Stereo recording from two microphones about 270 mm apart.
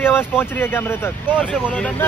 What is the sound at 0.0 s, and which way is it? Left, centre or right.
Speech, centre.